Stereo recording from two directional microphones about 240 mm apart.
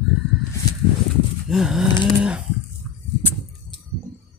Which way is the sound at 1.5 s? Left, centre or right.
Centre.